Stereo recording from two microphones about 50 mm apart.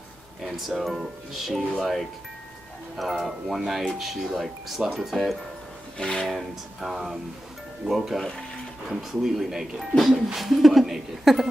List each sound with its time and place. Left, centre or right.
0.4 s speech: centre
5.9 s speech: centre
6.2 s speech: centre